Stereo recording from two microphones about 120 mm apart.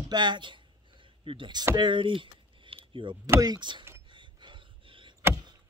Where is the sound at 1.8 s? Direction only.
45° right (ahead or behind).